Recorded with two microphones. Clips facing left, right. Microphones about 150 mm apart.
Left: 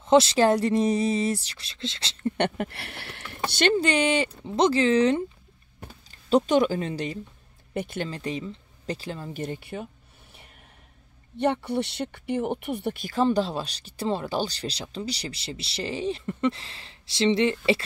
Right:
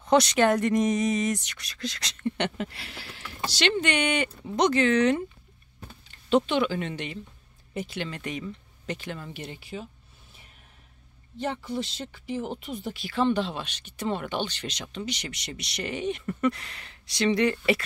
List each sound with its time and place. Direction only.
0.0 s speech: 25° left (ahead or behind)
2.2 s speech: 50° left (ahead or behind)
3.7 s speech: 30° left (ahead or behind)
7.7 s speech: 55° left (ahead or behind)
8.1 s speech: 30° left (ahead or behind)
9.3 s speech: 45° left (ahead or behind)
11.3 s speech: 65° left (ahead or behind)
13.0 s speech: 40° left (ahead or behind)